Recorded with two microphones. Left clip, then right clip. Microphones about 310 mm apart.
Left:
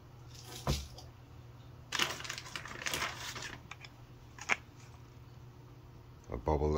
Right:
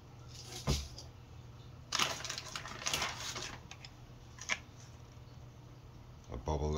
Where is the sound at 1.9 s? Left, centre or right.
Centre.